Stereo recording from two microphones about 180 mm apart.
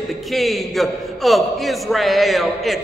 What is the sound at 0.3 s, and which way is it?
A man's voice, centre (ahead or behind).